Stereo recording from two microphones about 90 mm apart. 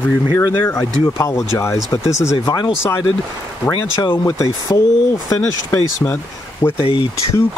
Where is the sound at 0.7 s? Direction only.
35° left (ahead or behind).